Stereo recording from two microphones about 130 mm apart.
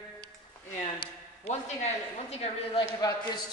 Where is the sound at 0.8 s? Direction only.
45° left (ahead or behind).